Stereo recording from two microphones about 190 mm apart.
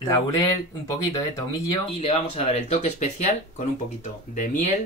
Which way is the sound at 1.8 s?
30° left (ahead or behind).